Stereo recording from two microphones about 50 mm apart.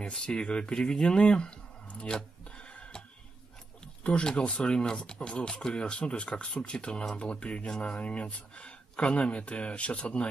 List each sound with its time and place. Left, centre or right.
0.0 s speech: centre
2.5 s a sound: left
4.0 s speech: left